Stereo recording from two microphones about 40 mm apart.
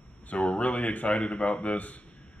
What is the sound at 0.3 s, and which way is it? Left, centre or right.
Speech, left.